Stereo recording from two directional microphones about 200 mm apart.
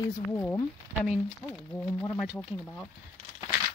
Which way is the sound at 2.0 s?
5° left (ahead or behind).